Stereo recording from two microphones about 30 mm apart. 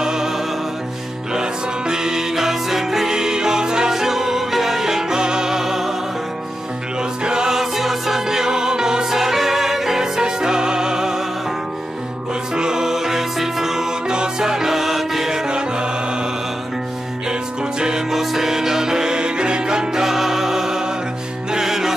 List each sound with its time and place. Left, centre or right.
0.0 s music: right
3.1 s music: right
7.0 s music: right
7.5 s music: centre
12.5 s music: right
15.4 s music: right
17.3 s music: right
18.1 s music: centre